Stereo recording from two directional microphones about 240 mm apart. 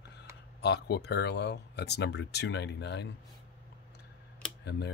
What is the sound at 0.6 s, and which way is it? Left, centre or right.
Speech, left.